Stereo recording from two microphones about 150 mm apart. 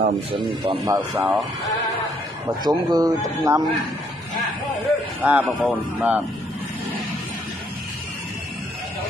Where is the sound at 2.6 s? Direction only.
25° right (ahead or behind).